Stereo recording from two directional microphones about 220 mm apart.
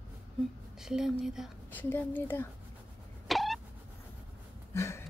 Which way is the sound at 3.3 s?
Centre (ahead or behind).